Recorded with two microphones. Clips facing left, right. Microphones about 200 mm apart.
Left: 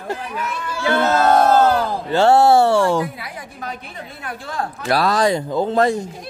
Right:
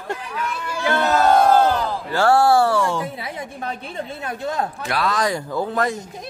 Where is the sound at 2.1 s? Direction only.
25° left (ahead or behind).